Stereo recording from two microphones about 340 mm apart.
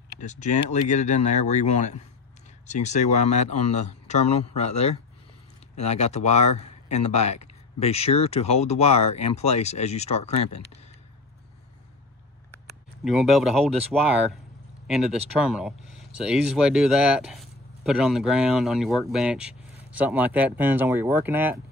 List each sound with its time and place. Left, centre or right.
0.2 s speech: left
13.0 s speech: centre
14.9 s speech: centre